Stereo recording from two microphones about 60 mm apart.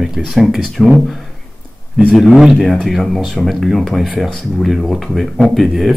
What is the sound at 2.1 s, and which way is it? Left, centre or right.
Speech, centre.